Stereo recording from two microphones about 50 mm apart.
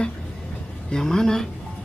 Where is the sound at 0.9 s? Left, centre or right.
Centre.